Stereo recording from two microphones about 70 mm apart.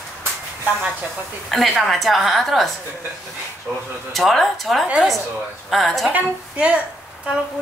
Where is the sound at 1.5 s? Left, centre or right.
Centre.